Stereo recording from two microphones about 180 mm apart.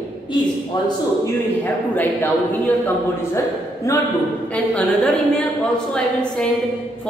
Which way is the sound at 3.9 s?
15° left (ahead or behind).